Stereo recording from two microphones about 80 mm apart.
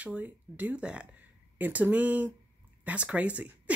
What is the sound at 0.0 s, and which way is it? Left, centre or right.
Speech, centre.